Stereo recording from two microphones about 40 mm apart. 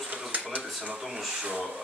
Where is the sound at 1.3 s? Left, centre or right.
Right.